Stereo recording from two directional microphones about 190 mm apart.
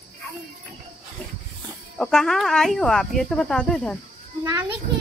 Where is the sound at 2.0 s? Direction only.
5° left (ahead or behind).